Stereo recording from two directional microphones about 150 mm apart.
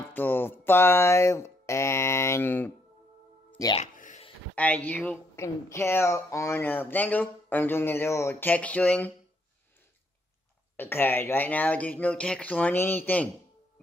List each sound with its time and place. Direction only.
0.1 s mantra: 15° left (ahead or behind)
3.7 s a sound: 60° left (ahead or behind)
4.6 s a woman's voice: 10° left (ahead or behind)
10.8 s a woman's voice: 15° left (ahead or behind)